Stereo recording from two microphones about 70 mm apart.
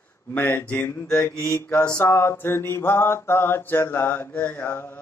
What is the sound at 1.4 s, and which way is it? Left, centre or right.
Mantra, left.